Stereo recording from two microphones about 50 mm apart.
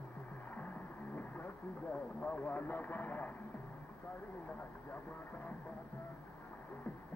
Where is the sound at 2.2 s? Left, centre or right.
Left.